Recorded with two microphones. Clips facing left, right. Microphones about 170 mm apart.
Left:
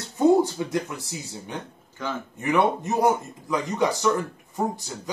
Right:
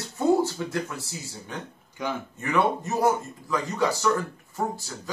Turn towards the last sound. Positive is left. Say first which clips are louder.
# left 2 dB
turn(degrees=20)  # may be behind; listen again after turning